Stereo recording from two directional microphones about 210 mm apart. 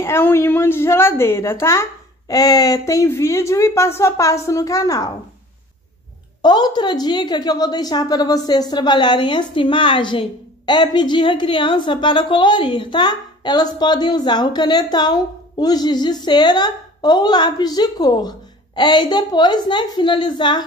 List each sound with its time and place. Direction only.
0.0 s a woman's voice: 10° left (ahead or behind)
6.4 s a woman's voice: 20° left (ahead or behind)